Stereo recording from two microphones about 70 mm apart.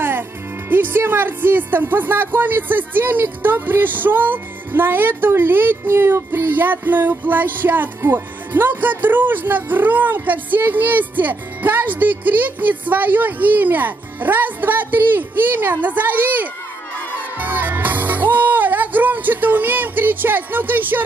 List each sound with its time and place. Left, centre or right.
0.7 s speech: right
17.4 s music: right